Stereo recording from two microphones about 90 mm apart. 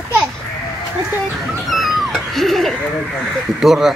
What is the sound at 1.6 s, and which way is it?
Cat, centre (ahead or behind).